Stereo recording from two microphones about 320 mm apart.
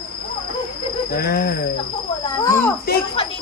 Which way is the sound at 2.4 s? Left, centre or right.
Centre.